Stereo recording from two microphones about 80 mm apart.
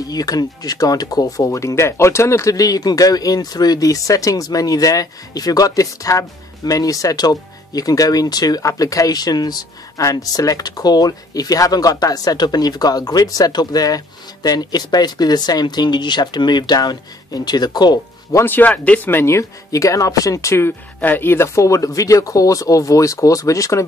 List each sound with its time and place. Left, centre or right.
0.1 s speech: left
18.3 s speech: left